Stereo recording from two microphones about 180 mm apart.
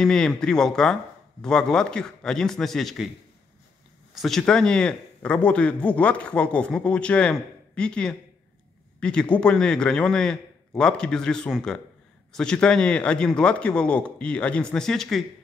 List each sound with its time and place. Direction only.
0.0 s speech: 5° left (ahead or behind)
4.1 s speech: centre (ahead or behind)